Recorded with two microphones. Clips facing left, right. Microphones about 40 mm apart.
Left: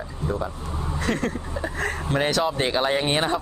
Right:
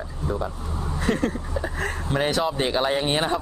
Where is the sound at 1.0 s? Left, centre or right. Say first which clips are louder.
Right 2 dB; centre.